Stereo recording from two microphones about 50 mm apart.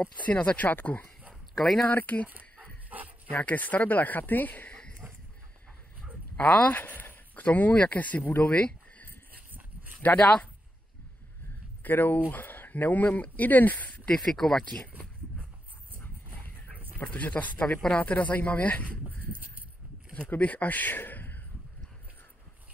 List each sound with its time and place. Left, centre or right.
0.0 s speech: left
2.6 s dog: right
3.3 s speech: left
5.0 s a sound: right
6.3 s speech: left
6.7 s speech: left
9.5 s a sound: right
10.0 s speech: left
11.8 s speech: left
14.0 s speech: centre
16.3 s dog: left
17.0 s speech: left
20.2 s a man's voice: left